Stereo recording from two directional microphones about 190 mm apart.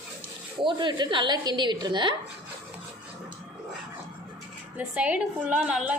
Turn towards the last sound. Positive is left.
turn(degrees=-5)  # may be behind; listen again after turning